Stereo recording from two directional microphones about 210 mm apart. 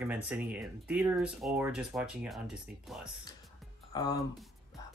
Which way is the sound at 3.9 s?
15° left (ahead or behind).